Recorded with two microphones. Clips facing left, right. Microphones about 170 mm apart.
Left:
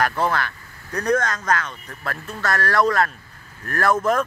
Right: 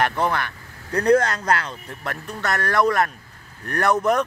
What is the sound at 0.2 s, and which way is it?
Speech, 20° right (ahead or behind).